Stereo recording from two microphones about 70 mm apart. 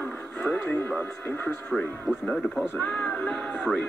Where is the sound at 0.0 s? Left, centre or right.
Left.